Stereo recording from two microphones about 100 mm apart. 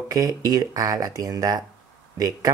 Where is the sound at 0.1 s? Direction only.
35° right (ahead or behind).